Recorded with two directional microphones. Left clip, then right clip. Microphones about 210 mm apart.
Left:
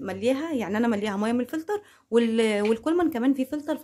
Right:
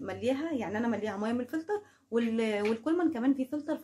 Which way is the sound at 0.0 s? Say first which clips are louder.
Left 6 dB; 30° left (ahead or behind).